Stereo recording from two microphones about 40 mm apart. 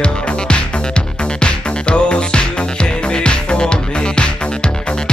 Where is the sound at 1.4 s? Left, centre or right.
Left.